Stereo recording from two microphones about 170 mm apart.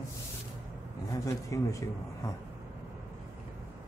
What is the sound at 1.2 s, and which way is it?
A man's voice, 20° left (ahead or behind).